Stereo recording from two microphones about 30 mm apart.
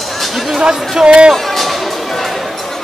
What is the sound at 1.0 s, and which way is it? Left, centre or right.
Speech, right.